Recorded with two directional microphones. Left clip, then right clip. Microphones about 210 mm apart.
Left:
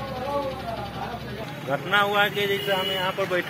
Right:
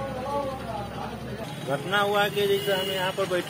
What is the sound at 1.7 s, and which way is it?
Speech, centre (ahead or behind).